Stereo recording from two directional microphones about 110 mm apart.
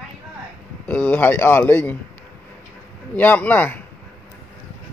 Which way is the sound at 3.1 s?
15° left (ahead or behind).